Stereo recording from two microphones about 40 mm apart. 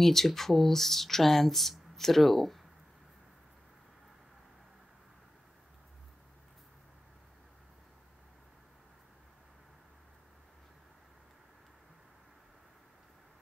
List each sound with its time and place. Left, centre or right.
0.0 s speech: centre